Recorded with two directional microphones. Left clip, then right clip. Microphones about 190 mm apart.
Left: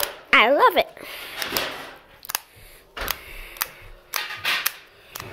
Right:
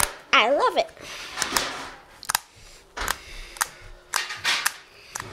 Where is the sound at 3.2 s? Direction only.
5° left (ahead or behind).